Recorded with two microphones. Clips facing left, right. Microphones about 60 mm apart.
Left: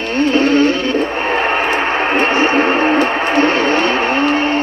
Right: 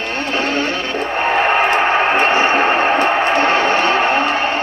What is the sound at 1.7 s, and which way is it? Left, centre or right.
Radio, centre.